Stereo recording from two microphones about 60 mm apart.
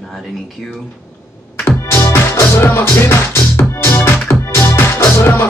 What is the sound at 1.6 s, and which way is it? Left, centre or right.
Music, left.